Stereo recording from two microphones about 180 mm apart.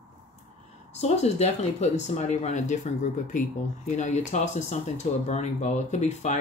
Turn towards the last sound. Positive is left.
turn(degrees=40)  # may be behind; listen again after turning